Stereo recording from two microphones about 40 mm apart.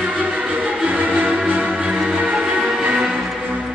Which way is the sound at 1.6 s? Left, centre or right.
Right.